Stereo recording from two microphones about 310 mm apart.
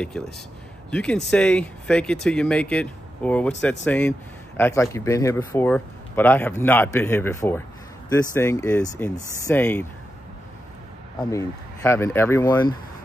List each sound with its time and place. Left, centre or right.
0.8 s a man's voice: centre
11.1 s a man's voice: centre